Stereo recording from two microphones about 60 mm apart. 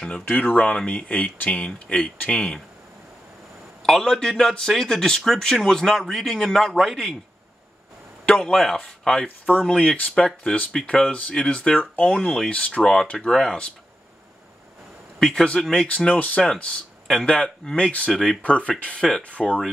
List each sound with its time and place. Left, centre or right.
0.1 s speech: left
3.8 s speech: centre
8.3 s speech: centre
9.5 s speech: left
12.4 s speech: left
15.1 s a man's voice: centre
18.4 s speech: centre